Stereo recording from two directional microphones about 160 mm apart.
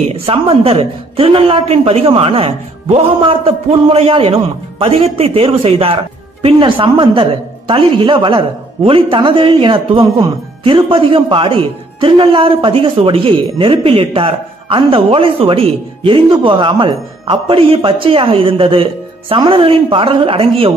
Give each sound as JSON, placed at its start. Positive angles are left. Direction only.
{"t": 0.1, "sound": "speech", "side_deg": -35}